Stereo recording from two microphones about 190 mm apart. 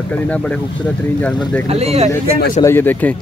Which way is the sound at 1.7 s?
30° right (ahead or behind).